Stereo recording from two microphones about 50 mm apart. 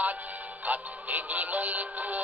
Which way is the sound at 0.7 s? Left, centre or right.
Right.